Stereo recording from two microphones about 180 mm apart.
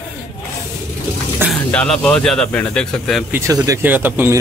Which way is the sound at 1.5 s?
5° left (ahead or behind).